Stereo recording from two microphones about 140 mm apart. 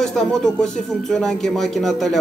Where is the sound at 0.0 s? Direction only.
5° left (ahead or behind).